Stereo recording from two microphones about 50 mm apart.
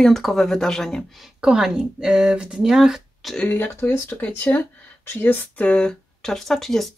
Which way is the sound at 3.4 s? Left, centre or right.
Left.